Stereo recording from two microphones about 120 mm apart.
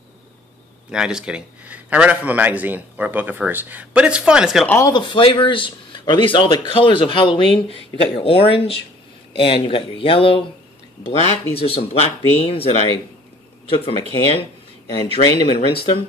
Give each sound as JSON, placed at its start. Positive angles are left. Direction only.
{"t": 0.9, "sound": "a man's voice", "side_deg": -5}
{"t": 4.6, "sound": "speech", "side_deg": 20}
{"t": 4.9, "sound": "speech", "side_deg": 40}